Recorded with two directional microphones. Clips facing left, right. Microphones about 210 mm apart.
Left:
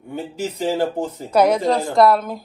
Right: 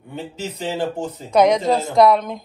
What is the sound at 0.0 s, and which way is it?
A man's voice, 10° left (ahead or behind).